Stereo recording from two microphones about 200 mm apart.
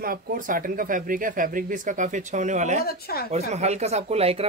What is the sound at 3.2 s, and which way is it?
Speech, 35° right (ahead or behind).